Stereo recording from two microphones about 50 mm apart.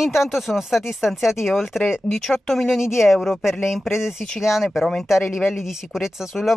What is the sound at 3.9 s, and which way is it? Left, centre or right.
Speech, centre.